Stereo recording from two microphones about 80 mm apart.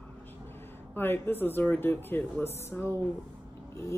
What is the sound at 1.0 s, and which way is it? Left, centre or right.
Speech, left.